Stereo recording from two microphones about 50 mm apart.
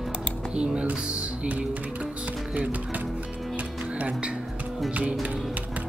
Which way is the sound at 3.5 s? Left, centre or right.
Right.